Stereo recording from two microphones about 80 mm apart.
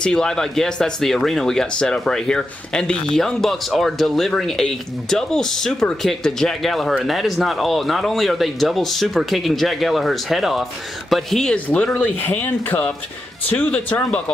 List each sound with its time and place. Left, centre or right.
0.0 s speech: centre
11.5 s speech: centre